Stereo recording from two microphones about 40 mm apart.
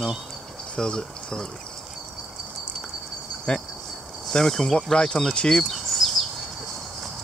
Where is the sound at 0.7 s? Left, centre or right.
Centre.